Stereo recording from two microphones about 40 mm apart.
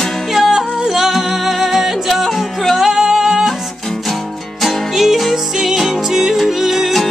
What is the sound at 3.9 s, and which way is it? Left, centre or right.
Music, centre.